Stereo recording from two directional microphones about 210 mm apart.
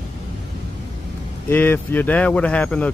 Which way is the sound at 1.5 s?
10° left (ahead or behind).